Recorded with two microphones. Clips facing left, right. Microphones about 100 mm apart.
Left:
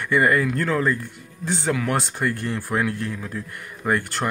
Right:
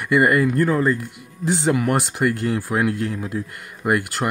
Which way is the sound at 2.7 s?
5° right (ahead or behind).